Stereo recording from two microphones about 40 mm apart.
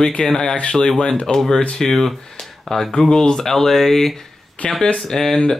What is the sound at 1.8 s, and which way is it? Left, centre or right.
Speech, centre.